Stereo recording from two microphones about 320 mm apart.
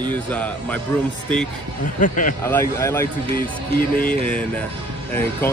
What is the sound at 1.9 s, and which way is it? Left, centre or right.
Speech, left.